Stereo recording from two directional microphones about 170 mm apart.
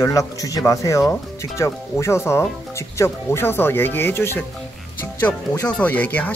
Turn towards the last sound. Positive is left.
turn(degrees=10)  # may be behind; listen again after turning